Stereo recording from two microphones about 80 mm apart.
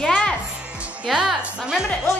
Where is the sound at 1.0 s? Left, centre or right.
Centre.